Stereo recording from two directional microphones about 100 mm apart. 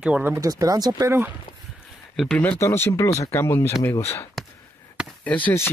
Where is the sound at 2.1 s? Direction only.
5° left (ahead or behind).